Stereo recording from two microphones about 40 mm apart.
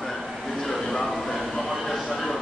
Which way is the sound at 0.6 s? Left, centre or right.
Centre.